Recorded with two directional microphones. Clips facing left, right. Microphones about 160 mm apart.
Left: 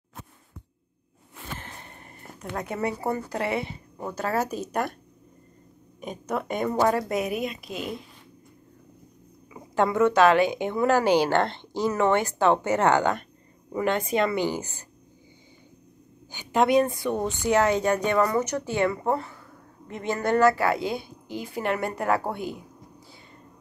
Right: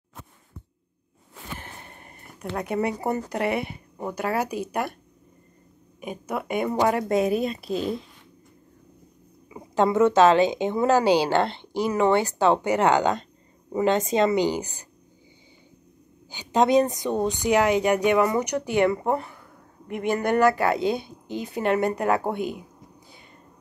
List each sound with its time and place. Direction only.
2.5 s speech: 15° right (ahead or behind)
5.9 s speech: 10° right (ahead or behind); by 7.9 s 35° right (ahead or behind)
9.5 s a woman's voice: 25° right (ahead or behind)
16.3 s a woman's voice: 20° right (ahead or behind)